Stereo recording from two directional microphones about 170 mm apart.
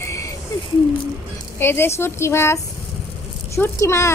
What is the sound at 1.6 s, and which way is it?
A woman's voice, 15° left (ahead or behind).